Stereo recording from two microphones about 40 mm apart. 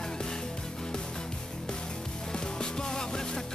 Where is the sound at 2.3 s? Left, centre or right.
Centre.